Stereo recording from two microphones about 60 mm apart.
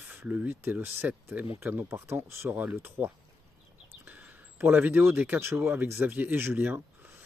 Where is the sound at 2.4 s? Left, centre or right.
Right.